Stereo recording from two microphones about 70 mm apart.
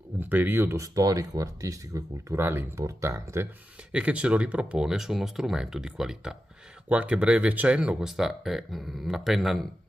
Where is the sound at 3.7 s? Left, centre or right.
Centre.